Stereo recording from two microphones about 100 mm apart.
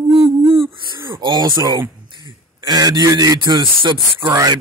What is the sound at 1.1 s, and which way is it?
Speech, 45° right (ahead or behind).